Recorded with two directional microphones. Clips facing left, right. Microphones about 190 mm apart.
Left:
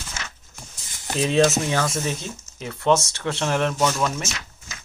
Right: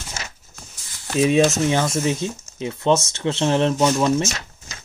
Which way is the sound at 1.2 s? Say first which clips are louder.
Right 3 dB; 15° right (ahead or behind).